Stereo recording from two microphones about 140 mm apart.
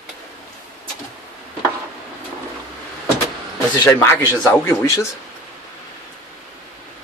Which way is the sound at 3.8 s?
15° left (ahead or behind).